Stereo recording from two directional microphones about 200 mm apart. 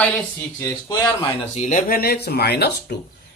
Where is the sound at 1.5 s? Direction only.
35° left (ahead or behind); by 3.0 s 55° left (ahead or behind).